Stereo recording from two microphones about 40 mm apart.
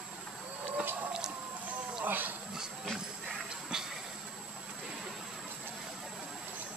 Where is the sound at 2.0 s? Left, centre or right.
Right.